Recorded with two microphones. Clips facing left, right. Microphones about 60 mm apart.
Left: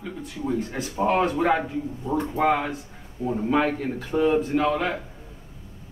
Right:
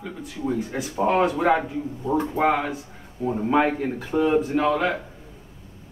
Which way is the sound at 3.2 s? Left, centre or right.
Right.